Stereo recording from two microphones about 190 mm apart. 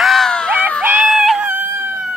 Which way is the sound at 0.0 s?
Centre (ahead or behind).